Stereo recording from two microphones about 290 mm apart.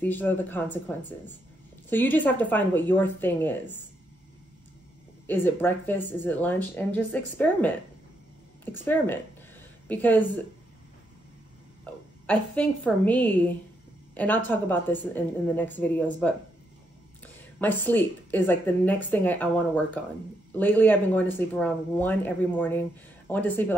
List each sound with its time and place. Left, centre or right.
0.0 s speech: centre
5.2 s speech: centre
8.8 s speech: centre
11.8 s a woman's voice: centre